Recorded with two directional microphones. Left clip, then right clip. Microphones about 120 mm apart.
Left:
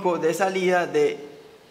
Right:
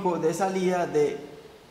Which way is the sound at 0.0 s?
25° left (ahead or behind).